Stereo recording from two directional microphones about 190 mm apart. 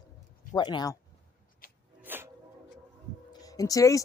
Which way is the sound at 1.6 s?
50° left (ahead or behind).